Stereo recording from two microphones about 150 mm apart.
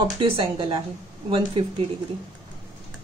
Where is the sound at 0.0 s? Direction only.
35° right (ahead or behind).